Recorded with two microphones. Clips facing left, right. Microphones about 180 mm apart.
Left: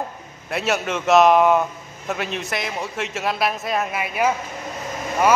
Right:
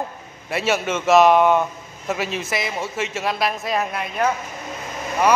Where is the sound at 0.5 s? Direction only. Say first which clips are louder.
Right 1 dB; centre (ahead or behind).